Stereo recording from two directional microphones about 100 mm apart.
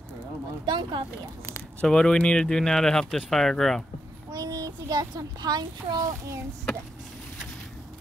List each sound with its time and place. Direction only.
0.7 s speech: 50° right (ahead or behind)
1.8 s speech: 10° left (ahead or behind)
4.3 s a child's voice: 40° right (ahead or behind)